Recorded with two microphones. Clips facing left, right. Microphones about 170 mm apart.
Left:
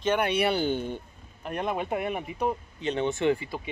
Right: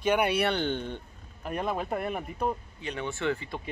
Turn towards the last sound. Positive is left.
turn(degrees=20)  # may be behind; listen again after turning